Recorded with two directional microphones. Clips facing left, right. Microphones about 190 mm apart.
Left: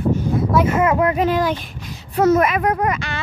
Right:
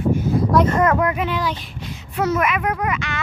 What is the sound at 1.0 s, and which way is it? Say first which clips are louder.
A child's voice: left 4 dB; 35° left (ahead or behind).